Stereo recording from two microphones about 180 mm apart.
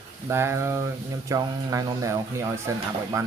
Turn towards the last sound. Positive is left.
turn(degrees=-15)  # may be behind; listen again after turning